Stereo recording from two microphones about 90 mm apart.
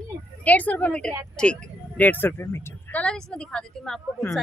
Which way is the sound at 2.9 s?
10° left (ahead or behind).